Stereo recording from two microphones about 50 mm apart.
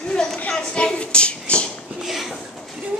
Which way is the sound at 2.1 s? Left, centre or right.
Centre.